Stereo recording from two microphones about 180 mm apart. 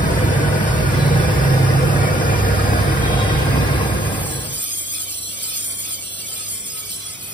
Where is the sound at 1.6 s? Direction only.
45° left (ahead or behind).